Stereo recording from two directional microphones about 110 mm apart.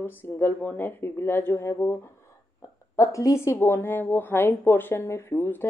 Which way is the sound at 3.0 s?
30° left (ahead or behind).